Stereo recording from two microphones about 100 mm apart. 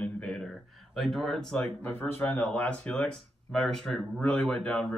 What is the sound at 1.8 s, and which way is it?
Speech, 20° left (ahead or behind).